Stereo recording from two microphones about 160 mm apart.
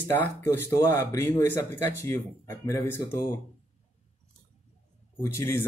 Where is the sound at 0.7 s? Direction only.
20° left (ahead or behind).